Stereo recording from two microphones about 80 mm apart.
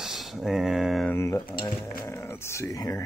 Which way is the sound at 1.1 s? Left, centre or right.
Left.